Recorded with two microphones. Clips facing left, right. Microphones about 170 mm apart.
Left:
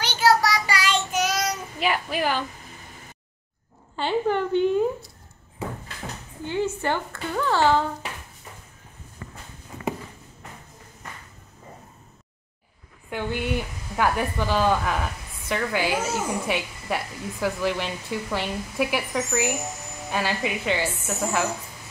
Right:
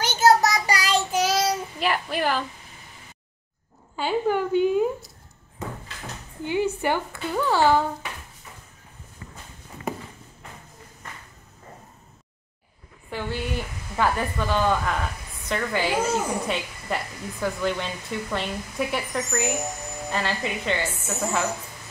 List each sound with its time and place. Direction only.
0.0 s child singing: 45° right (ahead or behind); by 1.5 s 30° right (ahead or behind)
1.8 s child singing: centre (ahead or behind)
3.9 s a woman's voice: 5° right (ahead or behind)
6.4 s a child's voice: 15° right (ahead or behind)
13.1 s a woman's voice: 15° left (ahead or behind)